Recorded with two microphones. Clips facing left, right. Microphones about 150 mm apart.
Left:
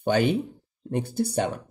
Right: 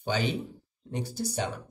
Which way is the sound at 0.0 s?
55° left (ahead or behind).